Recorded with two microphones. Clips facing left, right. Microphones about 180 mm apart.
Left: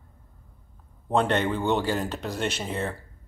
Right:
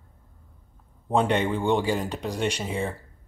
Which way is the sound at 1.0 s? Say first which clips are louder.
Right 1 dB; 10° right (ahead or behind).